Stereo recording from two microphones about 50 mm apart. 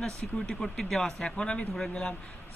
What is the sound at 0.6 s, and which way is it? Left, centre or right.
Speech, centre.